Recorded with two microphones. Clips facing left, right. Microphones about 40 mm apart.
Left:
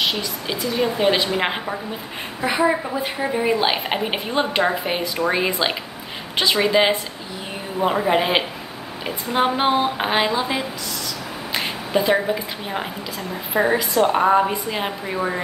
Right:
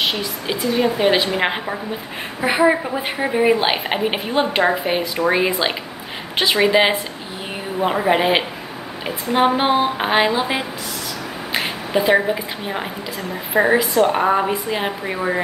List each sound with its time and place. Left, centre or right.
0.0 s a woman's voice: centre
2.4 s a woman's voice: centre
11.5 s a sound: centre
13.5 s a woman's voice: centre